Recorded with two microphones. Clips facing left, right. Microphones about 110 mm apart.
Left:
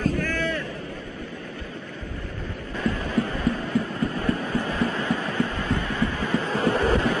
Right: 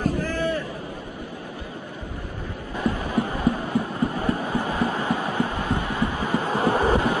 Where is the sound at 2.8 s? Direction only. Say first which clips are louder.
Right 1 dB; 20° right (ahead or behind).